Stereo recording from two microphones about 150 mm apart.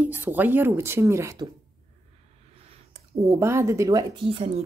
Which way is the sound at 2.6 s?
40° right (ahead or behind).